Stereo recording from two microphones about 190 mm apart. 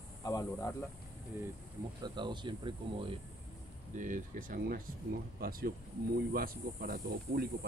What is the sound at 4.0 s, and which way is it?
Speech, 45° right (ahead or behind).